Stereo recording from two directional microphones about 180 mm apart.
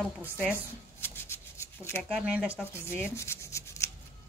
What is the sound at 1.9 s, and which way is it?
Speech, centre (ahead or behind).